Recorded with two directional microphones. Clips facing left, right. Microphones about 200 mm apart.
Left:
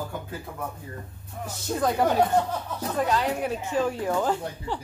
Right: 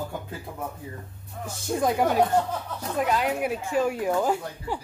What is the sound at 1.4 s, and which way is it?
A woman's voice, 15° right (ahead or behind).